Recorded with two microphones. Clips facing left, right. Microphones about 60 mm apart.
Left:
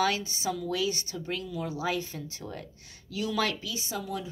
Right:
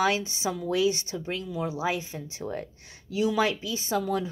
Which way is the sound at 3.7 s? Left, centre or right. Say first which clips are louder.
Right 7 dB; right.